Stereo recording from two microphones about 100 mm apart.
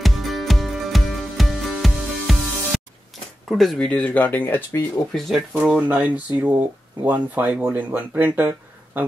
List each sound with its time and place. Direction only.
0.0 s music: centre (ahead or behind)
3.4 s speech: centre (ahead or behind); by 4.8 s 20° left (ahead or behind)
5.1 s speech: 5° right (ahead or behind)
5.9 s speech: 15° right (ahead or behind)